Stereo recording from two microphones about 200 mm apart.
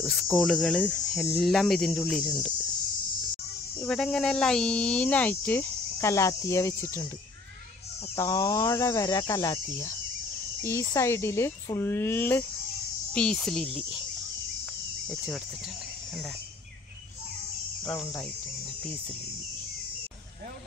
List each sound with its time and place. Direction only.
0.0 s speech: centre (ahead or behind)
3.8 s speech: centre (ahead or behind)
8.2 s speech: 15° left (ahead or behind); by 14.0 s centre (ahead or behind)
15.0 s speech: centre (ahead or behind)